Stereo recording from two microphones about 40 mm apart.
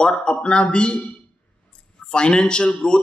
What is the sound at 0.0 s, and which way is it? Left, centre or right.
Speech, left.